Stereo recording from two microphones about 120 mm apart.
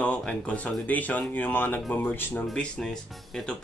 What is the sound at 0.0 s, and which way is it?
Speech, 10° left (ahead or behind).